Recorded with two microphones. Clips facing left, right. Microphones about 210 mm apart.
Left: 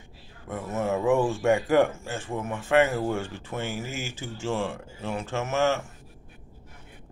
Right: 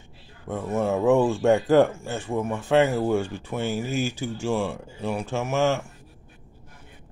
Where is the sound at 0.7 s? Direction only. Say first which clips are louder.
Right 3 dB; 15° right (ahead or behind).